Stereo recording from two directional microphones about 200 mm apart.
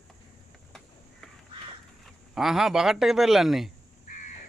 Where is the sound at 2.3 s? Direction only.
Centre (ahead or behind).